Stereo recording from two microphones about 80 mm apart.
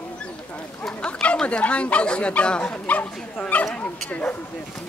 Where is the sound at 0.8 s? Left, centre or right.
Centre.